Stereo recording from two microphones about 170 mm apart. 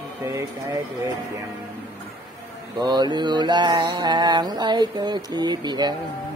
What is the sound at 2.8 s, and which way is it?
Mantra, 25° right (ahead or behind).